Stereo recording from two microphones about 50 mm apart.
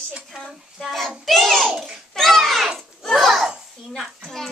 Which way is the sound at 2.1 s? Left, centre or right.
Centre.